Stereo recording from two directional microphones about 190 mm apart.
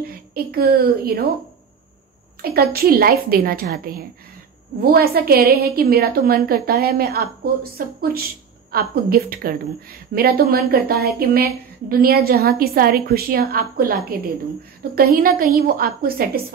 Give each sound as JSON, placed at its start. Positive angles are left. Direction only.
{"t": 0.0, "sound": "a woman's voice", "side_deg": -55}
{"t": 2.5, "sound": "a woman's voice", "side_deg": -55}